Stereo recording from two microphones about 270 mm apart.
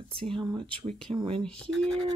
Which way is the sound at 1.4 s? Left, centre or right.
Centre.